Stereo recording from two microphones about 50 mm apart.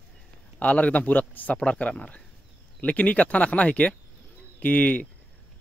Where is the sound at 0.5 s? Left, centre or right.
Left.